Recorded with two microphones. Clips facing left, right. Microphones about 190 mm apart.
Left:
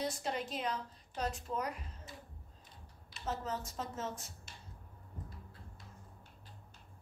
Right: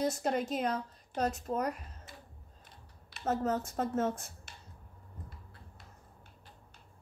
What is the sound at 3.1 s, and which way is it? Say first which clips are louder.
A woman's voice: right 8 dB; 55° right (ahead or behind).